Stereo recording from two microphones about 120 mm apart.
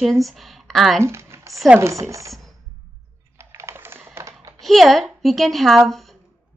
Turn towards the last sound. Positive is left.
turn(degrees=0)  # may be behind; listen again after turning